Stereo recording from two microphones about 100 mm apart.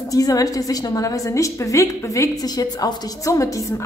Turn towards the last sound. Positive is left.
turn(degrees=35)  # may be behind; listen again after turning